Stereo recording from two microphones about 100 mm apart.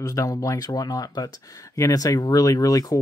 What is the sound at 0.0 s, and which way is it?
Speech, 35° left (ahead or behind).